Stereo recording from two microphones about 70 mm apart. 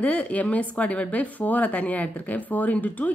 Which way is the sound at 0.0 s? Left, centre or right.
Centre.